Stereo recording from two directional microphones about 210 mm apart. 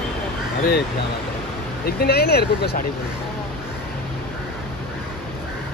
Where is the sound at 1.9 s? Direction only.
50° left (ahead or behind).